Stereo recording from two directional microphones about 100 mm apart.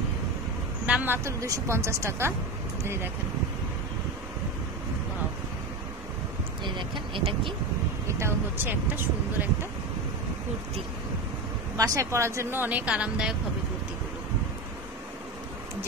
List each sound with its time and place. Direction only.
0.8 s a sound: 10° right (ahead or behind)
1.1 s speech: 30° right (ahead or behind)
6.6 s speech: 50° right (ahead or behind)
8.1 s speech: 25° right (ahead or behind)
11.7 s speech: 35° right (ahead or behind); by 13.3 s 10° right (ahead or behind)